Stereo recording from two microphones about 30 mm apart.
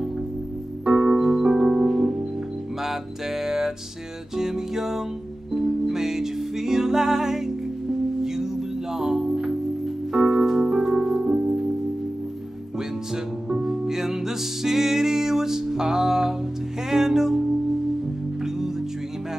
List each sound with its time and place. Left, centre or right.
0.8 s music: centre
1.4 s music: right
12.7 s music: centre